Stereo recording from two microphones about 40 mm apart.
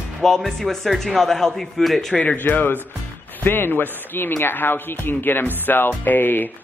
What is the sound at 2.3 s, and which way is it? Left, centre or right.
A man's voice, left.